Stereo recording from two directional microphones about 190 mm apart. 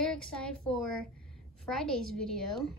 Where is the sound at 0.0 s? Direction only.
5° left (ahead or behind).